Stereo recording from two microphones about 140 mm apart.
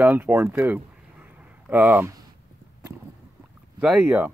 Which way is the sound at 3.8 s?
10° right (ahead or behind).